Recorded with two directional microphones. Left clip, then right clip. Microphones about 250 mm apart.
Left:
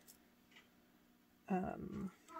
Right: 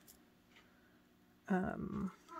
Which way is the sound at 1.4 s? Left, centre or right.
Centre.